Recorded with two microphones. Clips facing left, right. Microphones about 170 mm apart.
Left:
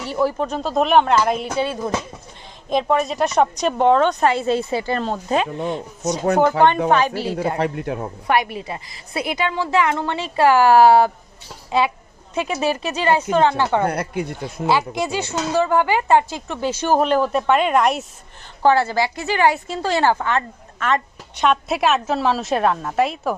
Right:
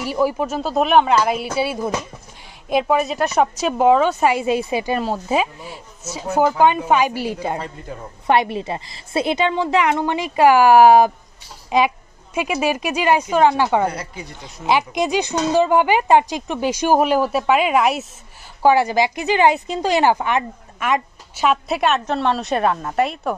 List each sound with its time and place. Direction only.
0.0 s a woman's voice: 10° right (ahead or behind)
6.9 s a woman's voice: 10° right (ahead or behind)
7.5 s speech: 75° left (ahead or behind)
8.3 s a woman's voice: 25° right (ahead or behind)
13.8 s speech: 55° left (ahead or behind)
14.7 s a woman's voice: 15° right (ahead or behind); by 23.3 s centre (ahead or behind)